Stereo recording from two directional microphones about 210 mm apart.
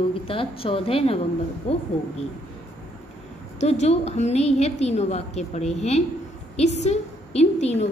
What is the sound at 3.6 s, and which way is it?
A woman's voice, 30° left (ahead or behind).